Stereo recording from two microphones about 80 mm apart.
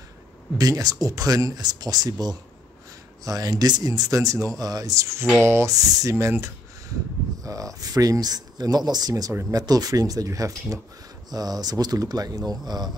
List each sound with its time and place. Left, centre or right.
0.6 s speech: right
5.4 s speech: right
7.4 s speech: right
11.2 s speech: right